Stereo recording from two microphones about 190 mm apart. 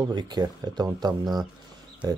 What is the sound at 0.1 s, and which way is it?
Speech, 20° right (ahead or behind).